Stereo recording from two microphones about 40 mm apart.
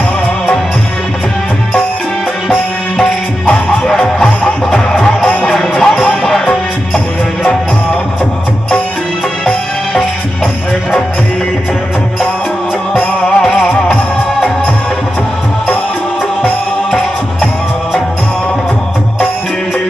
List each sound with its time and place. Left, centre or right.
2.5 s music: left
4.6 s music: centre
5.0 s music: left
5.5 s music: centre
12.9 s music: left